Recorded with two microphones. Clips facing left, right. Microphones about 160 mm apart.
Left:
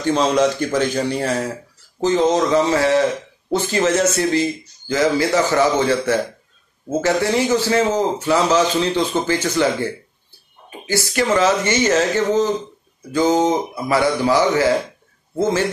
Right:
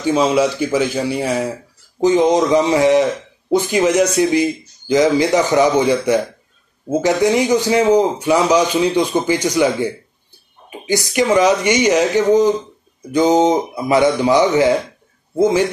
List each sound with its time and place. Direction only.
0.0 s a man's voice: 10° right (ahead or behind)